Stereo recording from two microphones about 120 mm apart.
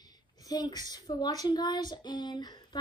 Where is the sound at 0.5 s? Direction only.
35° left (ahead or behind).